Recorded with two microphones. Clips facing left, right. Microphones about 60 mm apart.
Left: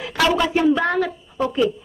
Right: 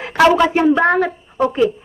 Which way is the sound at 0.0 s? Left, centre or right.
Right.